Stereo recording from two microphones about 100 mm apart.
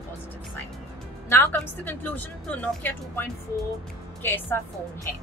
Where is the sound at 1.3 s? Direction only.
20° left (ahead or behind).